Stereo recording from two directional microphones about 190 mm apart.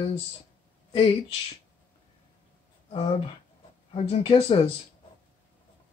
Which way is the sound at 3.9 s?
25° left (ahead or behind).